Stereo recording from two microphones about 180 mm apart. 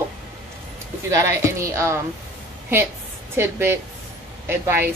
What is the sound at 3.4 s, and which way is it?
A woman's voice, 15° right (ahead or behind).